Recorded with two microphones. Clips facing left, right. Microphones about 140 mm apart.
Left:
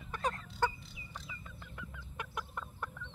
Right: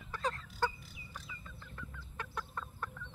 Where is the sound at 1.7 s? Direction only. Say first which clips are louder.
Even; 15° left (ahead or behind).